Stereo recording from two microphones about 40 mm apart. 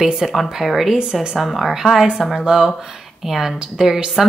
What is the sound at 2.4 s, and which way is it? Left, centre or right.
Speech, centre.